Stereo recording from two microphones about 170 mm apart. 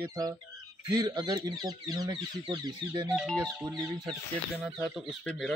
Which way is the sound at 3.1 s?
Centre (ahead or behind).